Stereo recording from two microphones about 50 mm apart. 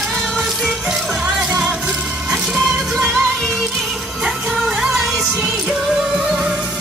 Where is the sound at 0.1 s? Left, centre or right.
Centre.